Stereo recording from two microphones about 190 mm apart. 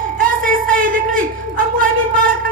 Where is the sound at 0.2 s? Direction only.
45° right (ahead or behind).